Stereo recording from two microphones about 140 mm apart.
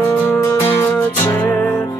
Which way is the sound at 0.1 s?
20° left (ahead or behind).